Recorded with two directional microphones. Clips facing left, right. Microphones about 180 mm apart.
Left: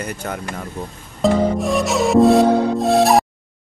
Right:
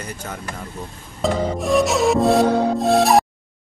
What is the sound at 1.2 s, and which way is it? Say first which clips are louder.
A man's voice: left 5 dB; centre (ahead or behind).